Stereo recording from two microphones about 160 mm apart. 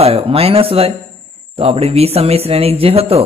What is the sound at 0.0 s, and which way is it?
A man's voice, 35° right (ahead or behind).